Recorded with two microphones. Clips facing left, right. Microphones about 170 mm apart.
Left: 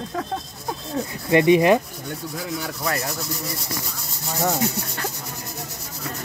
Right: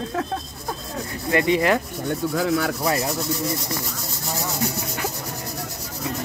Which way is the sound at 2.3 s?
85° right.